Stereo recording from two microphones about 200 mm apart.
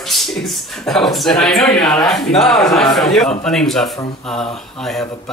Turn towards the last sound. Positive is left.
turn(degrees=0)  # may be behind; listen again after turning